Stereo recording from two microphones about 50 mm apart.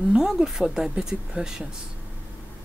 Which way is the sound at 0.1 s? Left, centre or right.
Centre.